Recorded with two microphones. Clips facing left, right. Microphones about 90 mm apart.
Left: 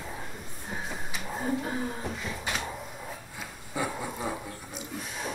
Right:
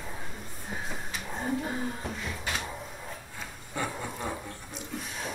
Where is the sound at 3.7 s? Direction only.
5° left (ahead or behind).